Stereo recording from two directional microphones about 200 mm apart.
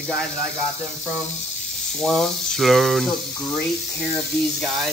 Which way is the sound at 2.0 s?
Centre (ahead or behind).